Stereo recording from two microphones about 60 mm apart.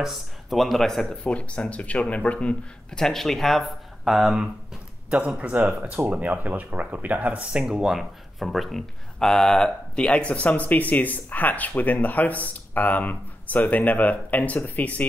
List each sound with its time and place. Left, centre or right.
0.0 s speech: centre
1.2 s speech: centre
5.1 s speech: right; by 15.0 s left